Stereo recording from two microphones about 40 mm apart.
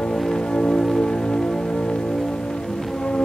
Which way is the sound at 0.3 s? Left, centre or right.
Centre.